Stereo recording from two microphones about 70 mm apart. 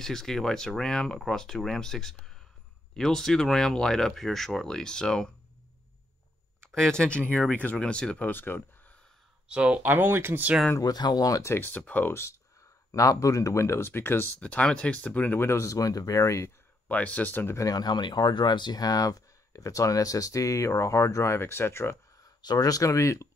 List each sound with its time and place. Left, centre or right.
0.0 s speech: centre
6.6 s speech: centre
8.3 s speech: left
9.5 s speech: centre
9.8 s speech: right
10.8 s speech: left
11.4 s speech: left
11.7 s speech: left
12.1 s speech: left
12.9 s speech: left
14.4 s speech: centre; by 16.5 s left
16.8 s speech: centre
17.6 s speech: left
22.4 s speech: left